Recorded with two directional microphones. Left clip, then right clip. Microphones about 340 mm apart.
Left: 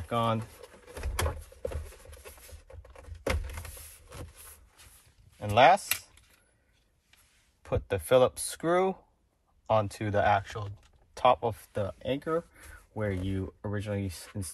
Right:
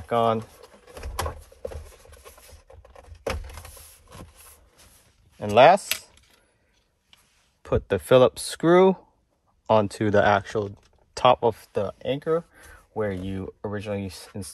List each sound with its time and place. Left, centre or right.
0.1 s speech: centre
5.4 s speech: right
7.6 s speech: right
11.1 s speech: right